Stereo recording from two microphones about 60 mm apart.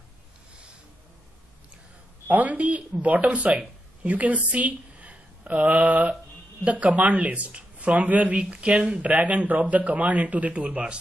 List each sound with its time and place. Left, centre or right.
2.2 s speech: right